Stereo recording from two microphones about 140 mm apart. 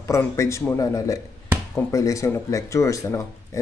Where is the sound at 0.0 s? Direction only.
20° left (ahead or behind).